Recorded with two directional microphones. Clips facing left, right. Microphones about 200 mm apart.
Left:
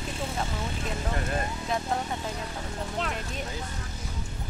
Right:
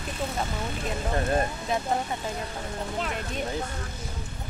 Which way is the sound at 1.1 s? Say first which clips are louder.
Right 7 dB; 35° right (ahead or behind).